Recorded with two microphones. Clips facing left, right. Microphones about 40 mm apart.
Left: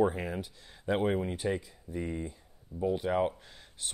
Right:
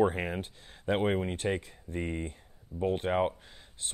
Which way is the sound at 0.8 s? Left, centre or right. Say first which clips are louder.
Right 1 dB; right.